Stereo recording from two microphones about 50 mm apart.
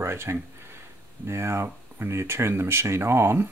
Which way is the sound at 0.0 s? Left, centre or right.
Right.